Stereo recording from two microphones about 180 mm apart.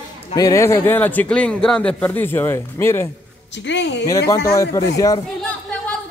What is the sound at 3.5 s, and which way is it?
Speech, 80° left.